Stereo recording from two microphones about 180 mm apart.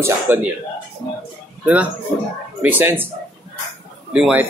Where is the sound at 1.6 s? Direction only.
10° right (ahead or behind).